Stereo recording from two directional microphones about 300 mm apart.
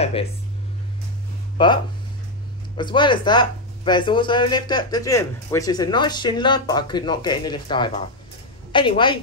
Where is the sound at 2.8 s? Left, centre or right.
Centre.